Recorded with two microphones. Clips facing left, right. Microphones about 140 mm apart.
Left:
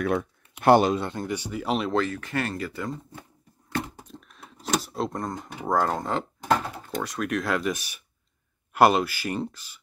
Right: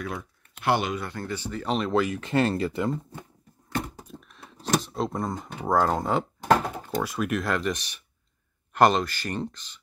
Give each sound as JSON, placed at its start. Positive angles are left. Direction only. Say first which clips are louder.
{"t": 0.0, "sound": "speech", "louder": "left 8 dB", "side_deg": 60}
{"t": 0.9, "sound": "speech", "louder": "left 3 dB", "side_deg": 20}
{"t": 2.0, "sound": "speech", "louder": "right 3 dB", "side_deg": -15}
{"t": 4.0, "sound": "a sound", "louder": "right 1 dB", "side_deg": 0}
{"t": 5.7, "sound": "speech", "louder": "right 2 dB", "side_deg": -5}